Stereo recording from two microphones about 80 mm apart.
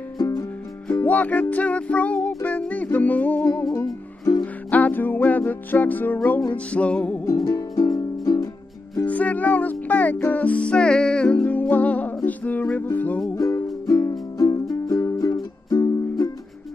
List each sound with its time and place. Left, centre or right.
0.2 s music: left
1.0 s music: centre
3.7 s music: left
4.6 s music: centre
7.2 s music: left
9.0 s music: centre
13.4 s music: left